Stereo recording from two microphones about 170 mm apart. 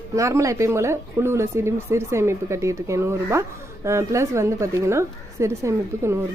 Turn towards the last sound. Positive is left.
turn(degrees=-15)  # may be behind; listen again after turning